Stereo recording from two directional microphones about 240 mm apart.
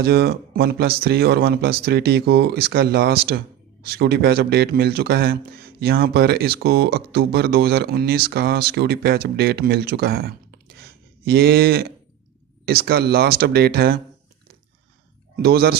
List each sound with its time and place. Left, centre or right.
0.0 s speech: right
15.4 s speech: right